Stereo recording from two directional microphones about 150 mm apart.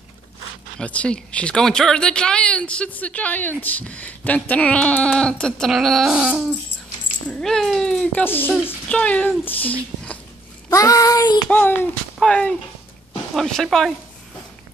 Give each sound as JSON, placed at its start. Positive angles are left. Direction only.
{"t": 0.7, "sound": "a woman's voice", "side_deg": 10}
{"t": 7.2, "sound": "a woman's voice", "side_deg": 5}
{"t": 10.7, "sound": "child singing", "side_deg": 20}
{"t": 11.4, "sound": "a woman's voice", "side_deg": 10}